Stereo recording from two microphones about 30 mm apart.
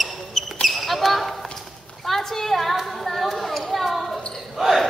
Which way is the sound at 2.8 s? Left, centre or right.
Centre.